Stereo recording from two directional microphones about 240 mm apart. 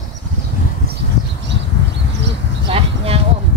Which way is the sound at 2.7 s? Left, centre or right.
Right.